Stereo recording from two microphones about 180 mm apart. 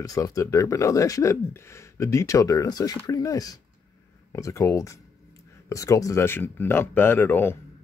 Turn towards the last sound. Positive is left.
turn(degrees=10)  # may be behind; listen again after turning